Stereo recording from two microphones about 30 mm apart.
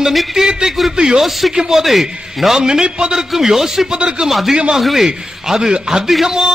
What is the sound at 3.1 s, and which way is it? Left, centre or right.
A man's voice, centre.